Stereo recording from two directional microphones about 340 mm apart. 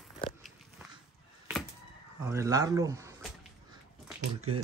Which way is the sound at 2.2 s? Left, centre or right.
Centre.